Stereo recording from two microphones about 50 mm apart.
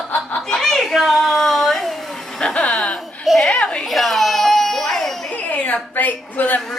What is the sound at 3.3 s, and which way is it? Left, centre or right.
Children playing, centre.